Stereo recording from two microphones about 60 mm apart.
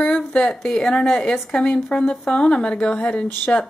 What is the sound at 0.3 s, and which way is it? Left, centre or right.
Speech, centre.